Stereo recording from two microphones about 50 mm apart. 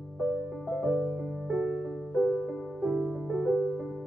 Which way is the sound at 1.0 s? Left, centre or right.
Centre.